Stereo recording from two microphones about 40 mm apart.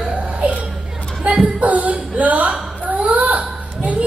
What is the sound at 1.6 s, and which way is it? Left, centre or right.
Music, right.